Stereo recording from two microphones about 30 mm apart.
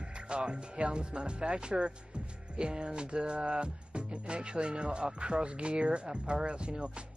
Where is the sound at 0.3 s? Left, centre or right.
Right.